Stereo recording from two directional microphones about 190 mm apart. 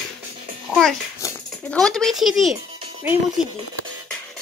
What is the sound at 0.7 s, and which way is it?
Babbling, centre (ahead or behind).